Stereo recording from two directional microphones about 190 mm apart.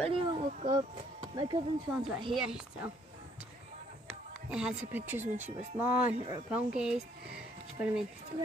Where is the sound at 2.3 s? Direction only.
5° right (ahead or behind).